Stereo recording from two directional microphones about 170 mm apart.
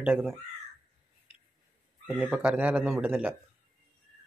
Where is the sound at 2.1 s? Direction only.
5° right (ahead or behind).